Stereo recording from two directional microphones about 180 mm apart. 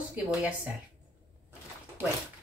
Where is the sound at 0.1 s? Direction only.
10° right (ahead or behind).